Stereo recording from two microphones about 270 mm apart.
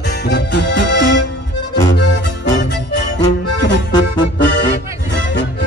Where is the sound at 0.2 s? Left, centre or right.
Left.